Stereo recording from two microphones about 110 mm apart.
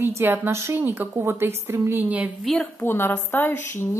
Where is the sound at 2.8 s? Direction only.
20° left (ahead or behind).